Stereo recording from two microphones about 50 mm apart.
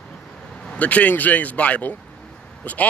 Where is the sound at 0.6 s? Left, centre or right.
Left.